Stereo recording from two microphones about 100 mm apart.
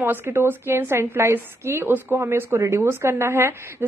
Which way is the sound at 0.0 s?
20° right (ahead or behind).